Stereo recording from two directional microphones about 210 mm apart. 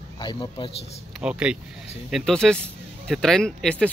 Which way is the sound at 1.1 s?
5° right (ahead or behind).